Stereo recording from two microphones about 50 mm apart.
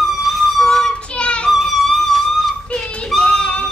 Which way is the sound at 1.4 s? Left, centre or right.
Centre.